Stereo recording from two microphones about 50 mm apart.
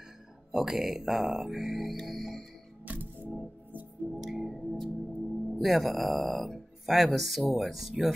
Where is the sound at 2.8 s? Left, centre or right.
Right.